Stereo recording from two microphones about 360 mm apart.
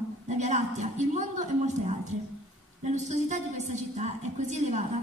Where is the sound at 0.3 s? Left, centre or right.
Centre.